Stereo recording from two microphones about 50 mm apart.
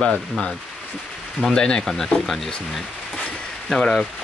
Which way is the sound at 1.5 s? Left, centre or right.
Centre.